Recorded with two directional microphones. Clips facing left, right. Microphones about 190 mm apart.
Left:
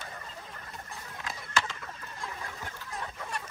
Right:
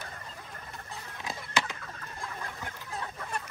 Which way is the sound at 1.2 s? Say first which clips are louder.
Right 1 dB; 20° right (ahead or behind).